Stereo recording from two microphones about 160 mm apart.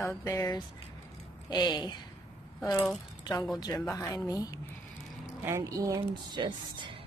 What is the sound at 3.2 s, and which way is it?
Speech, 20° left (ahead or behind).